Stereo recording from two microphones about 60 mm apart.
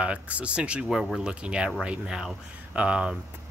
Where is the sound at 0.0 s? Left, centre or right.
Right.